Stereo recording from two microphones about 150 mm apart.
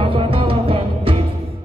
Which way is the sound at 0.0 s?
35° right (ahead or behind).